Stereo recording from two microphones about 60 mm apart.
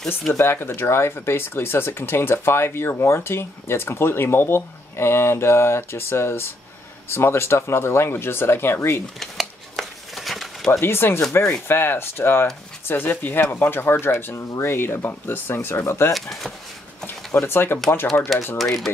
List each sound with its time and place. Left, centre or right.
0.3 s speech: left
9.4 s a sound: centre
10.8 s speech: left
16.1 s speech: centre
17.0 s speech: left
18.6 s speech: centre